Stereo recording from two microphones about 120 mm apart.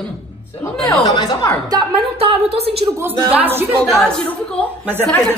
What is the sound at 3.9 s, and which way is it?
Speech, 5° left (ahead or behind).